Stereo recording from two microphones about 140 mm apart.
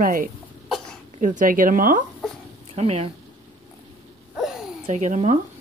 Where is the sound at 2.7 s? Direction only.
50° right (ahead or behind).